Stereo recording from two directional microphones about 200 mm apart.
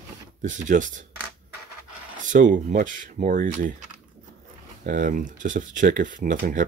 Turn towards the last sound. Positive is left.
turn(degrees=-45)  # may be behind; listen again after turning